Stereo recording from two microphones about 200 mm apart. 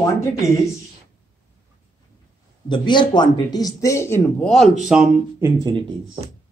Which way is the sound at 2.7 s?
25° left (ahead or behind).